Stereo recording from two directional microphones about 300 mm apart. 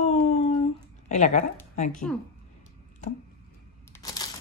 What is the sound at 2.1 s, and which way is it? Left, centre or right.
Speech, centre.